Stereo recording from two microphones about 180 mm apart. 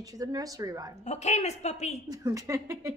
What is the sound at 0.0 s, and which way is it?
Speech, 20° right (ahead or behind).